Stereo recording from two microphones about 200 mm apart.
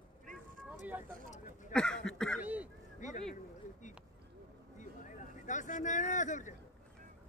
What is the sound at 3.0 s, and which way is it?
Speech, 35° left (ahead or behind).